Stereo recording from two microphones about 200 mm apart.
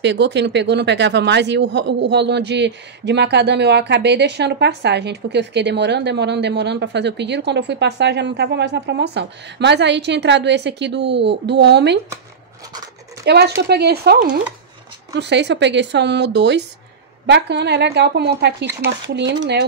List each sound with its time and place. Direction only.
0.0 s speech: 60° right (ahead or behind)
13.2 s speech: 55° right (ahead or behind)